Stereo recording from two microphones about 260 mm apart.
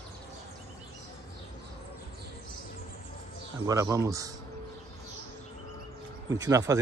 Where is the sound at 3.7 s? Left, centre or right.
Centre.